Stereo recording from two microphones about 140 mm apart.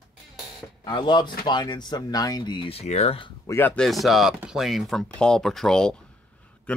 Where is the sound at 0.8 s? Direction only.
30° left (ahead or behind).